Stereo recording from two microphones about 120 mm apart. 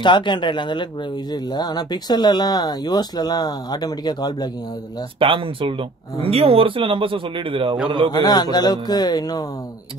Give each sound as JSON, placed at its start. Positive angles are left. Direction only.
{"t": 0.0, "sound": "speech", "side_deg": 40}
{"t": 5.2, "sound": "a man's voice", "side_deg": -45}
{"t": 8.1, "sound": "speech", "side_deg": 35}